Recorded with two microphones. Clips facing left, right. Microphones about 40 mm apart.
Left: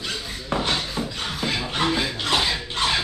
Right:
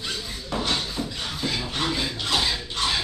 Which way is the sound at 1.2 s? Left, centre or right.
Left.